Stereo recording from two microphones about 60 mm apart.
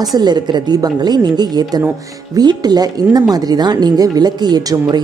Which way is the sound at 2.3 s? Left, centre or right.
Right.